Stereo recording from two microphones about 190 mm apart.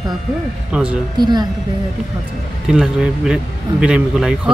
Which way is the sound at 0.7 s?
5° right (ahead or behind).